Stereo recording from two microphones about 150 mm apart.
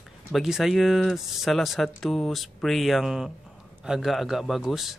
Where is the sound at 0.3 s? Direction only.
Centre (ahead or behind).